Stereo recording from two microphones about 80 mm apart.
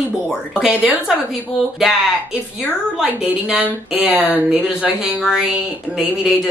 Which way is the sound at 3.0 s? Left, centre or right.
Centre.